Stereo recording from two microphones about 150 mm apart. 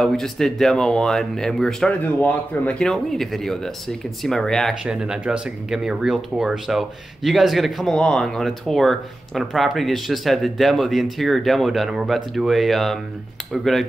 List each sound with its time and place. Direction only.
0.0 s speech: 5° left (ahead or behind)